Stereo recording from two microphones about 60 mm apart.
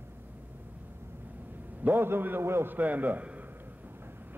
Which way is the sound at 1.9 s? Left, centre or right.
Right.